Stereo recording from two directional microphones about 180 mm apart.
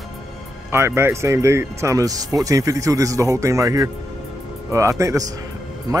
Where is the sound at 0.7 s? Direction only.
15° right (ahead or behind).